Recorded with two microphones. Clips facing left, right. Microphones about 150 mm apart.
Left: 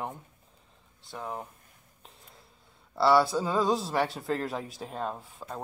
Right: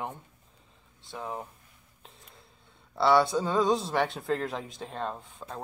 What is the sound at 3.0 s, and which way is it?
Speech, centre (ahead or behind).